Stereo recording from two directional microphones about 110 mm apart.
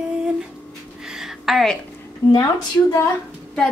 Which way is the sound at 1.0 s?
5° right (ahead or behind).